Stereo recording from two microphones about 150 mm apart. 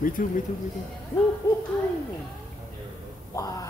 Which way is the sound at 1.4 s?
25° left (ahead or behind).